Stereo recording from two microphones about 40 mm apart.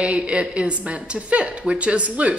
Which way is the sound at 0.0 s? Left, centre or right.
Right.